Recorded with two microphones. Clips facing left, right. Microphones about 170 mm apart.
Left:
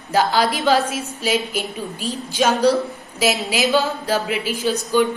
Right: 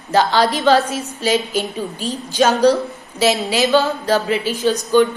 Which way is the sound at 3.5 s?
5° left (ahead or behind).